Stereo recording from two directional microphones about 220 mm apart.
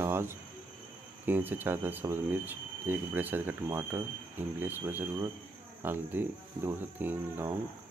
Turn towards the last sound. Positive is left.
turn(degrees=-10)  # may be behind; listen again after turning